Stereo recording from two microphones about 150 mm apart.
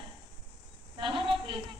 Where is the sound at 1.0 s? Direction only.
35° right (ahead or behind).